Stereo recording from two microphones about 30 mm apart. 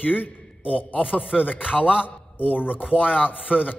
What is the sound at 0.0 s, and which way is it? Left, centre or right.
Speech, left.